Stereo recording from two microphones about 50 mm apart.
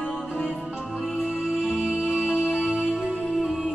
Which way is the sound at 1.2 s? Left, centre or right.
Centre.